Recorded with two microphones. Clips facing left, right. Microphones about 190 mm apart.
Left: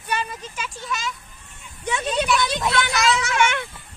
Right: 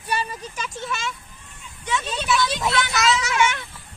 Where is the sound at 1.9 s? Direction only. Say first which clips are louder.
Left 3 dB; 55° left (ahead or behind).